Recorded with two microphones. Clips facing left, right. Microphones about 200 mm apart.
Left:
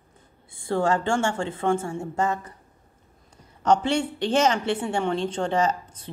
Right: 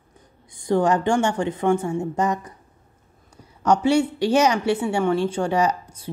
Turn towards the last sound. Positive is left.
turn(degrees=-10)  # may be behind; listen again after turning